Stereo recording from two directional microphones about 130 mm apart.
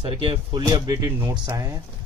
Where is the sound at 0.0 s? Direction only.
40° right (ahead or behind).